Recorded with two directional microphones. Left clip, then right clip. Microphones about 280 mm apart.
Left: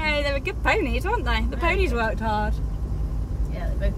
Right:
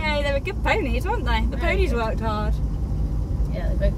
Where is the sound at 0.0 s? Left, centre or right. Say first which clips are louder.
Even; centre.